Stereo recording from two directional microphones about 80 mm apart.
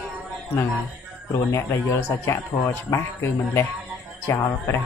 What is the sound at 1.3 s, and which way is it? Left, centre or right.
Speech, left.